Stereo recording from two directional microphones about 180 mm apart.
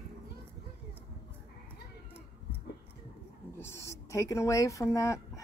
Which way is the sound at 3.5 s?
15° left (ahead or behind).